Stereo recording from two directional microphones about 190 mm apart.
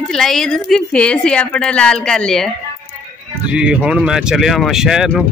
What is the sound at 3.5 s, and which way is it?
Speech, 5° right (ahead or behind).